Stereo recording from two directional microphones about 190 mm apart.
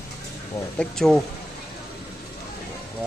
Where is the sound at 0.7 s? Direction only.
Centre (ahead or behind).